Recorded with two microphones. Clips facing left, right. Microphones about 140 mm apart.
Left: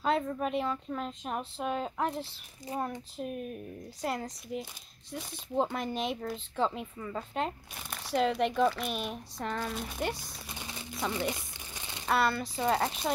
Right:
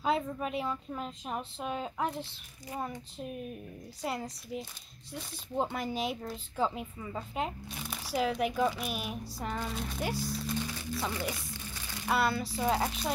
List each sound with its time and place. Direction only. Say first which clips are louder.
0.0 s speech: left 1 dB; 5° right (ahead or behind)
10.4 s music: right 8 dB; 15° left (ahead or behind)
11.1 s crumpling: left 3 dB; 20° left (ahead or behind)
12.1 s speech: left 1 dB; centre (ahead or behind)